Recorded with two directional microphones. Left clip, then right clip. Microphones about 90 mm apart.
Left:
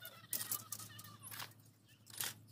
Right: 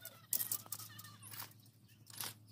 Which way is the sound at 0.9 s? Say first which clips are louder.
Left 2 dB; 35° right (ahead or behind).